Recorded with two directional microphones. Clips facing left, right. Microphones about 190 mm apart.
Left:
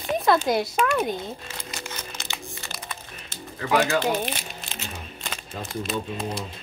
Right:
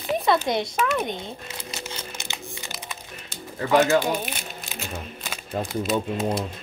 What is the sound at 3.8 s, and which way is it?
Speech, 20° right (ahead or behind).